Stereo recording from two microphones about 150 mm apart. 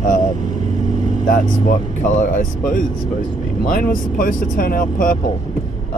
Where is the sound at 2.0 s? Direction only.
60° left (ahead or behind).